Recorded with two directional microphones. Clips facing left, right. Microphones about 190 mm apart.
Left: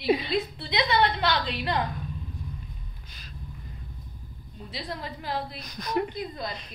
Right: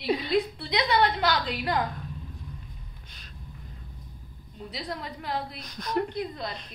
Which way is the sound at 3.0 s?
5° left (ahead or behind).